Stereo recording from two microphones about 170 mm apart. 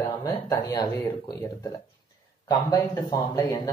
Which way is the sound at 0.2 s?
20° left (ahead or behind).